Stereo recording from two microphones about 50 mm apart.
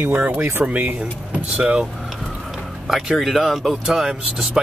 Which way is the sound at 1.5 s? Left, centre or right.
Right.